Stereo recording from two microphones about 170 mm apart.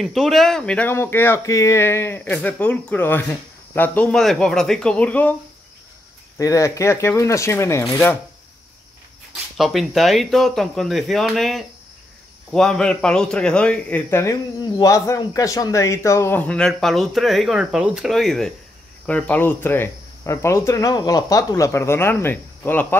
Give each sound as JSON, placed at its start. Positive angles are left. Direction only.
{"t": 0.0, "sound": "speech", "side_deg": 0}
{"t": 6.3, "sound": "speech", "side_deg": 20}
{"t": 9.6, "sound": "speech", "side_deg": 0}